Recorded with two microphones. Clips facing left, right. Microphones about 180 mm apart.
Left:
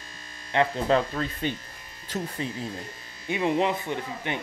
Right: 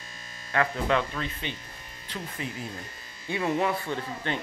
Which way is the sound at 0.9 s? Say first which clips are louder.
Left 5 dB; 40° left (ahead or behind).